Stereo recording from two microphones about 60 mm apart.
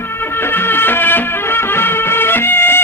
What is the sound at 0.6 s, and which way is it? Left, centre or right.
Music, left.